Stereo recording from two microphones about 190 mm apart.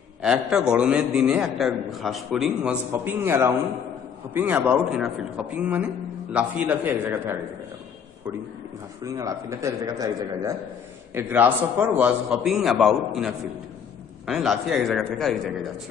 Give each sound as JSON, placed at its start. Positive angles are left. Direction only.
{"t": 0.2, "sound": "a man's voice", "side_deg": -5}
{"t": 9.0, "sound": "a man's voice", "side_deg": -15}